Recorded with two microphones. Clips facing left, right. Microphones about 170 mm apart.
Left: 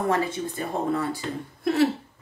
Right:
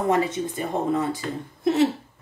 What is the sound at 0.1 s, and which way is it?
Speech, 20° right (ahead or behind).